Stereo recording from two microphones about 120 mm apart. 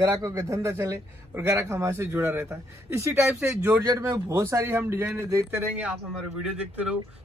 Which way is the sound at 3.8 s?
30° right (ahead or behind).